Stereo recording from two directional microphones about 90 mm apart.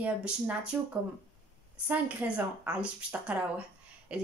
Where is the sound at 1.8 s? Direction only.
15° right (ahead or behind).